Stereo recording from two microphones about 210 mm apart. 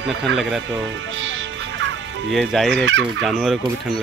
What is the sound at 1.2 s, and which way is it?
Music, 60° right (ahead or behind).